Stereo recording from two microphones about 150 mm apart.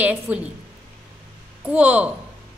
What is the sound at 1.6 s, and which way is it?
Speech, 10° right (ahead or behind).